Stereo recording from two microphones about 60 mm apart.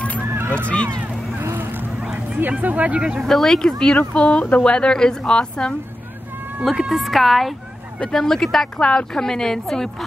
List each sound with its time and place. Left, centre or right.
0.2 s a sound: right
0.7 s speech: centre
1.4 s vehicle: right
2.6 s speech: right
3.2 s speech: centre
6.6 s speech: centre